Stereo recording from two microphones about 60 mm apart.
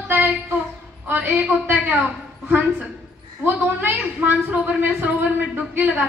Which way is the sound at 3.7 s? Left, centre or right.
Right.